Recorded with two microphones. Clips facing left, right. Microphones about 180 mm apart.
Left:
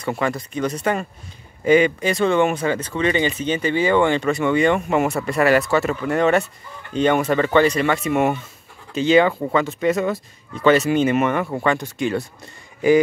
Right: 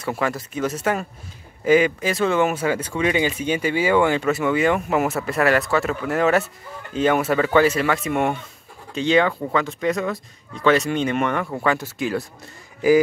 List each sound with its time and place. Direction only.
0.0 s speech: 5° right (ahead or behind)